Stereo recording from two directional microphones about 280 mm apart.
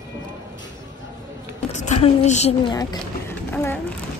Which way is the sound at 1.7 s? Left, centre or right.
Left.